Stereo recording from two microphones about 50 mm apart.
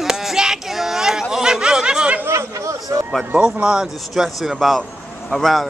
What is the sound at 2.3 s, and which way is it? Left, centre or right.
Chatter, right.